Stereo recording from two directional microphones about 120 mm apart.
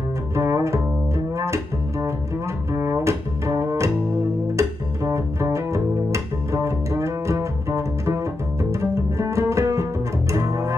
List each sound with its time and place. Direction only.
0.4 s double bass: 25° right (ahead or behind)
4.6 s music: 25° right (ahead or behind)
10.3 s double bass: 25° right (ahead or behind)